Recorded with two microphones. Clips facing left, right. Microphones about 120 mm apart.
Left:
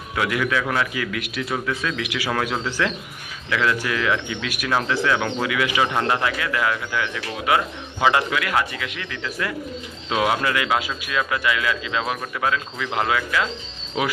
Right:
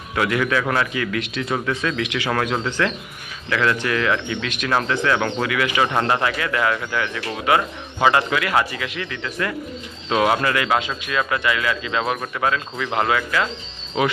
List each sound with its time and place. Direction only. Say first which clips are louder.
0.1 s speech: right 2 dB; 5° left (ahead or behind)
5.9 s speech: right 2 dB; centre (ahead or behind)